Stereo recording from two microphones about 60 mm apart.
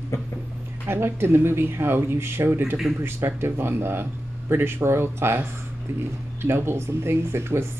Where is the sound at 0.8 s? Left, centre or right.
Right.